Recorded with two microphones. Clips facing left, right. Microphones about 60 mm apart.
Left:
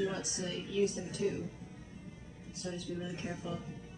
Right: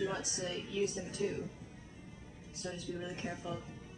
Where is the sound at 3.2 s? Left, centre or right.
Centre.